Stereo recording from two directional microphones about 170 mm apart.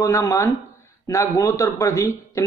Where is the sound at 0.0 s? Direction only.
20° left (ahead or behind).